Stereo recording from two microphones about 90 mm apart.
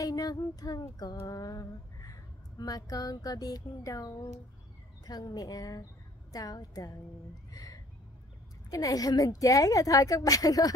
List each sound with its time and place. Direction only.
0.0 s female singing: 45° left (ahead or behind)
7.5 s a sound: 40° left (ahead or behind)
8.6 s a woman's voice: 40° left (ahead or behind)